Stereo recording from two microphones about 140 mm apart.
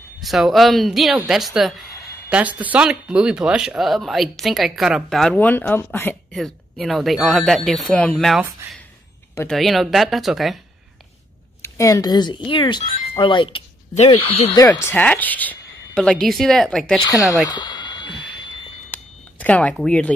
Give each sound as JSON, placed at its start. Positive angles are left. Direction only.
{"t": 0.2, "sound": "speech", "side_deg": 0}
{"t": 6.3, "sound": "speech", "side_deg": 0}
{"t": 8.6, "sound": "speech", "side_deg": -15}
{"t": 9.5, "sound": "speech", "side_deg": 0}
{"t": 11.6, "sound": "speech", "side_deg": 25}
{"t": 14.6, "sound": "a woman's voice", "side_deg": 20}
{"t": 17.1, "sound": "a woman's voice", "side_deg": 25}
{"t": 17.5, "sound": "a sound", "side_deg": 30}
{"t": 18.9, "sound": "a sound", "side_deg": 10}
{"t": 19.7, "sound": "speech", "side_deg": 5}